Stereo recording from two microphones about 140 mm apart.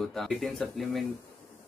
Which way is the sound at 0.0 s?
Centre (ahead or behind).